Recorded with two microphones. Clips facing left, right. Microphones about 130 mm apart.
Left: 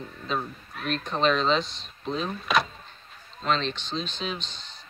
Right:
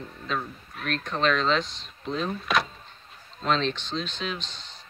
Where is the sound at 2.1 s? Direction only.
10° left (ahead or behind).